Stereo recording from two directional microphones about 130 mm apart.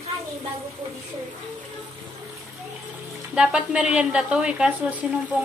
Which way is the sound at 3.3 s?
5° right (ahead or behind).